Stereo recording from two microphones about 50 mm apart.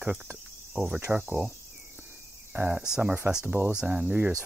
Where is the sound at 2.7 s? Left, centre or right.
Centre.